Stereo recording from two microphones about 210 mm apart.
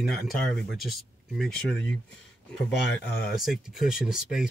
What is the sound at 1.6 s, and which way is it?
Speech, 60° left (ahead or behind).